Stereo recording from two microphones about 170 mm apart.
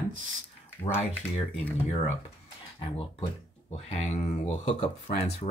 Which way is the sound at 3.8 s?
45° left (ahead or behind).